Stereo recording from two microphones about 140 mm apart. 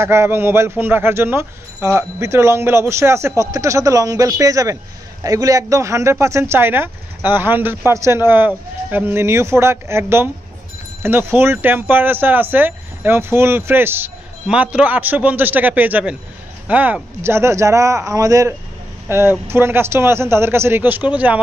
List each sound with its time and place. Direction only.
0.0 s speech: 20° right (ahead or behind)